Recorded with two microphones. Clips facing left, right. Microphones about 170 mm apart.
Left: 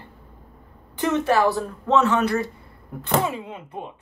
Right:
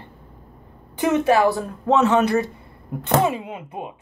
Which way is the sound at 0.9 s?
15° right (ahead or behind).